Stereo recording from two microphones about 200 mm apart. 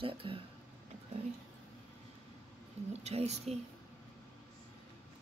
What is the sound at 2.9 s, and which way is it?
Speech, 30° right (ahead or behind).